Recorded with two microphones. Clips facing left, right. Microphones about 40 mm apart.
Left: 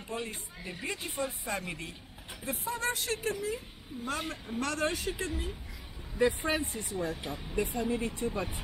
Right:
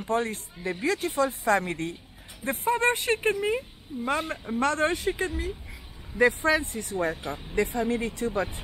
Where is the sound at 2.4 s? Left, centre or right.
Right.